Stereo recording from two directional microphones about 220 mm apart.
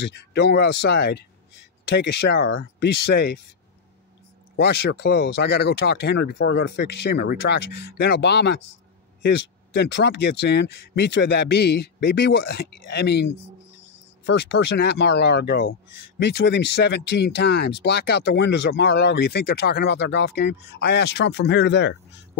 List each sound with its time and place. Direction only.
0.0 s speech: 50° left (ahead or behind)
4.6 s speech: 50° left (ahead or behind)
9.8 s speech: 50° left (ahead or behind)